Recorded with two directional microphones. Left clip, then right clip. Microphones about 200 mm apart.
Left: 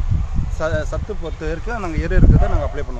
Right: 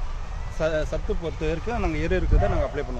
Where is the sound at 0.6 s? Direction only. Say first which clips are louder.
Left 3 dB; 25° left (ahead or behind).